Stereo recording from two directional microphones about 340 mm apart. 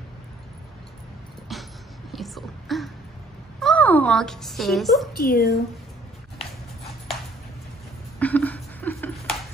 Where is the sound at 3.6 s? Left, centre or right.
Centre.